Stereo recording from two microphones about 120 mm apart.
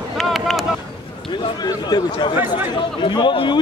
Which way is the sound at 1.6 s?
35° left (ahead or behind).